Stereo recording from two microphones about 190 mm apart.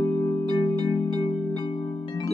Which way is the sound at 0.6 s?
30° left (ahead or behind).